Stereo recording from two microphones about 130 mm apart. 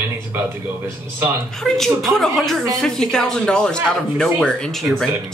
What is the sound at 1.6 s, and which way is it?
Speech, centre (ahead or behind).